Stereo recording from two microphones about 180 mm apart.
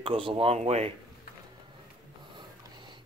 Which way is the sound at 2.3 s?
25° right (ahead or behind).